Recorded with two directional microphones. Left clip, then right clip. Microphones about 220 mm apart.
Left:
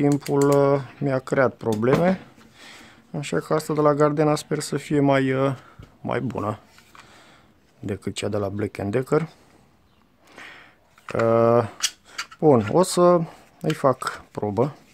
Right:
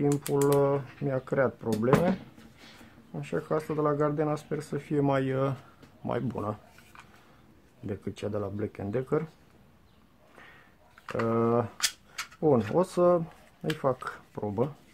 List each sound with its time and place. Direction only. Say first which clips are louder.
0.0 s speech: left 6 dB; 40° left (ahead or behind)
7.8 s speech: left 7 dB; 35° left (ahead or behind)
10.3 s a sound: left 11 dB; 40° left (ahead or behind)
11.1 s speech: left 9 dB; 35° left (ahead or behind)